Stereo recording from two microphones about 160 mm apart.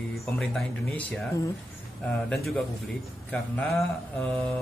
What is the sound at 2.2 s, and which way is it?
Speech, centre (ahead or behind).